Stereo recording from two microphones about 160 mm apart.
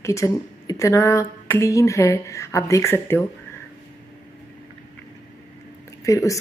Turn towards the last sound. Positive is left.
turn(degrees=20)  # may be behind; listen again after turning